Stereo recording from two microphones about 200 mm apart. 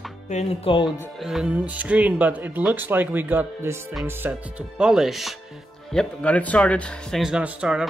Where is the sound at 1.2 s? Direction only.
Centre (ahead or behind).